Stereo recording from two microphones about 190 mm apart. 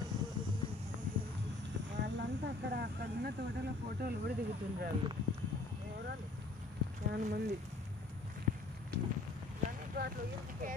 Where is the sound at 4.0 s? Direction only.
55° right (ahead or behind).